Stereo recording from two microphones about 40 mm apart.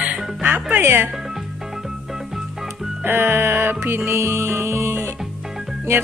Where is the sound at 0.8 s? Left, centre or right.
Right.